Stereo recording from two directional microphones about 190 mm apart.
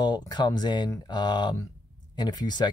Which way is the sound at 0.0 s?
20° left (ahead or behind).